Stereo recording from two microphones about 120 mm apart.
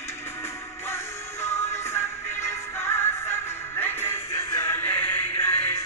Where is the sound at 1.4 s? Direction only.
20° left (ahead or behind).